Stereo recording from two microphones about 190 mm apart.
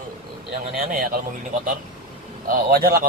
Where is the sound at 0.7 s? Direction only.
45° right (ahead or behind).